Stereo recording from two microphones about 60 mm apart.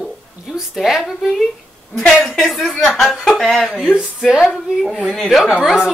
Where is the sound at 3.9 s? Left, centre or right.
Centre.